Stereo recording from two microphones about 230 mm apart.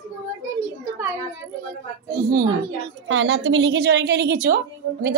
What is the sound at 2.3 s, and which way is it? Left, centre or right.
Speech, centre.